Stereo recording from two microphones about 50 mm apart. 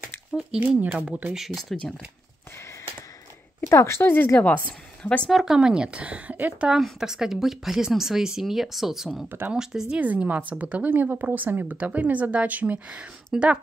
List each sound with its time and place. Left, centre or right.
0.6 s speech: right
0.9 s speech: right
1.3 s speech: centre
3.6 s speech: left
4.0 s speech: left
5.0 s speech: left
5.3 s speech: centre; by 6.7 s right
6.8 s a woman's voice: centre
9.8 s speech: right